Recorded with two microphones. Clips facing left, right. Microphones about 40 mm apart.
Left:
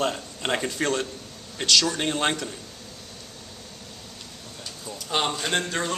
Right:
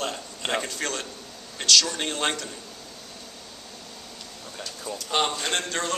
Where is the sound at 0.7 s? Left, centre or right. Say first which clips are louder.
Left 5 dB; left.